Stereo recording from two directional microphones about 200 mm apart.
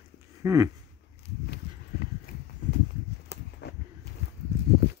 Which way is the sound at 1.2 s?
55° left (ahead or behind).